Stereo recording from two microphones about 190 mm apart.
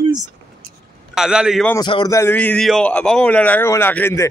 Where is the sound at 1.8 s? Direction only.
25° left (ahead or behind).